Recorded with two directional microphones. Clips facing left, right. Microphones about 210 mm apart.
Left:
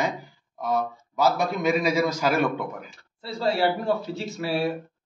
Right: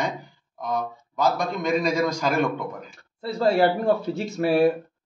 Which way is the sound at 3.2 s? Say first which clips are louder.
Right 4 dB; 50° right (ahead or behind).